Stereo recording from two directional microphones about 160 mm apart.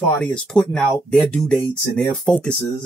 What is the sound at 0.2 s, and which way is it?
Speech, 5° left (ahead or behind).